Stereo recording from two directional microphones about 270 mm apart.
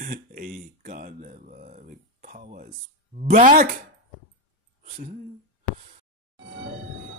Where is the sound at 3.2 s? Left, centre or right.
Right.